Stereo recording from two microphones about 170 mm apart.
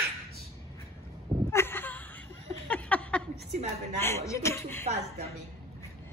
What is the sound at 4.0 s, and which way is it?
Chuckle, 15° left (ahead or behind).